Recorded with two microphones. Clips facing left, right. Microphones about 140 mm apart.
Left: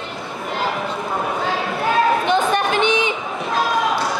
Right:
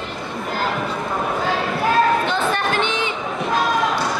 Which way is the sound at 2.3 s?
15° left (ahead or behind).